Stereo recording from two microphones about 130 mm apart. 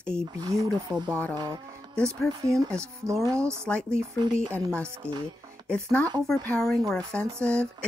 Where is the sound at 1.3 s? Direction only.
30° right (ahead or behind).